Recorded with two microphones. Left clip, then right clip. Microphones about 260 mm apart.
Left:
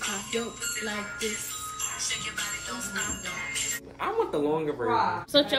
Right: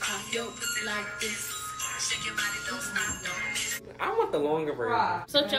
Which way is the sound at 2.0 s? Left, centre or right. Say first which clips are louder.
Right 3 dB; centre.